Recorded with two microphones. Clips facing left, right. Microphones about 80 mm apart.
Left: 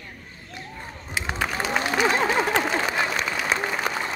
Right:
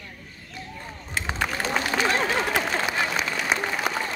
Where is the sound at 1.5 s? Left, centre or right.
Centre.